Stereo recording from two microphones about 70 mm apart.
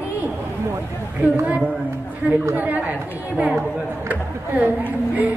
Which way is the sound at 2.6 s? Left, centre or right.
Right.